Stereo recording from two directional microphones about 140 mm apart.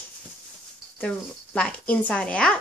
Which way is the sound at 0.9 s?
5° left (ahead or behind).